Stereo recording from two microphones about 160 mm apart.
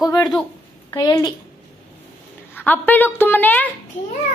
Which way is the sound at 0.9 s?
25° left (ahead or behind).